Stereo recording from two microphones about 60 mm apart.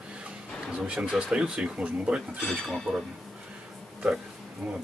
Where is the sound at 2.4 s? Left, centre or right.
Centre.